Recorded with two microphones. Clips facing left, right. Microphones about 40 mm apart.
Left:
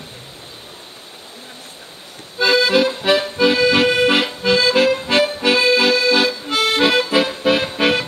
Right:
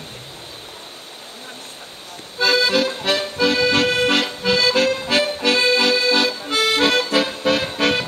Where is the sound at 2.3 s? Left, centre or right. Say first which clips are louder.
Left 3 dB; centre.